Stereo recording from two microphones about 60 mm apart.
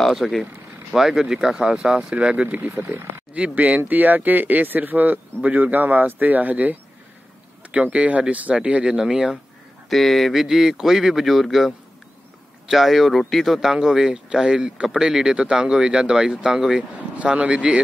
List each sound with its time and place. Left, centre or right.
0.0 s a man's voice: centre
9.8 s a man's voice: centre
10.4 s a man's voice: centre
17.1 s speech: right